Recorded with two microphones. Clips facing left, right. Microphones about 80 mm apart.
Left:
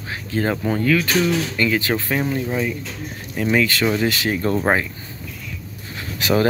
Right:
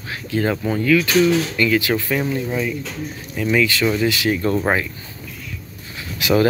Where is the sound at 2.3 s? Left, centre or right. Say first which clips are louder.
Even; centre.